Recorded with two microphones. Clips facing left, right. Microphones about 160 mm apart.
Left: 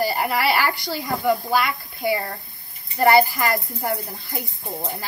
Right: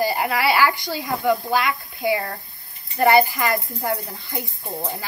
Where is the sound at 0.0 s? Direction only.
20° right (ahead or behind).